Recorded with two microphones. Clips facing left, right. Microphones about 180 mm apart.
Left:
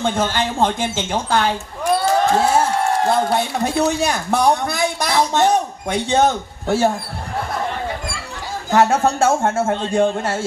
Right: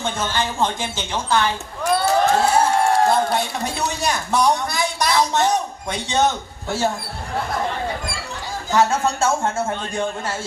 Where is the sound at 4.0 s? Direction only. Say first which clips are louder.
Left 2 dB; 55° left (ahead or behind).